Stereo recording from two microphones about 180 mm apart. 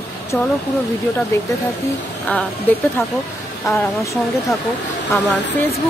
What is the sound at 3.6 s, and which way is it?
Speech, 15° left (ahead or behind).